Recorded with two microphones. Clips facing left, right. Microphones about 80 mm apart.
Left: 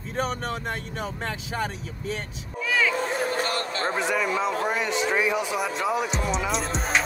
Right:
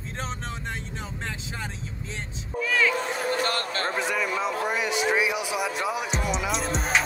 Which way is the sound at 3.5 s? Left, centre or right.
Right.